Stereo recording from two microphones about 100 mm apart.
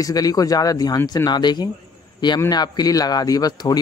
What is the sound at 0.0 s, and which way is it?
A man's voice, 40° left (ahead or behind).